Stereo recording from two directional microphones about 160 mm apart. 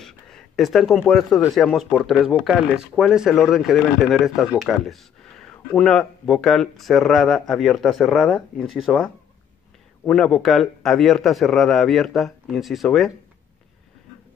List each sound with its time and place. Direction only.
0.0 s speech: centre (ahead or behind)
10.0 s speech: centre (ahead or behind)